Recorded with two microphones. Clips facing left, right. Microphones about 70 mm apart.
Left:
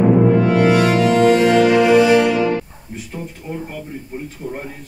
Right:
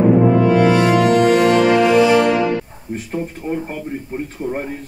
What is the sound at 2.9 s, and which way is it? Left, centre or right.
Speech, right.